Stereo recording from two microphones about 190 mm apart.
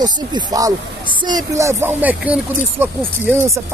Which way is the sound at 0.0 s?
20° right (ahead or behind).